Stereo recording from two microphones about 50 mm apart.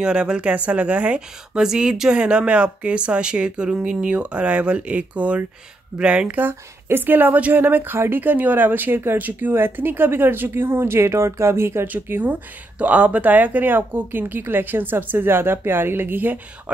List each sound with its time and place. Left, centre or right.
0.0 s speech: centre
6.3 s speech: right
12.1 s speech: right
12.7 s speech: right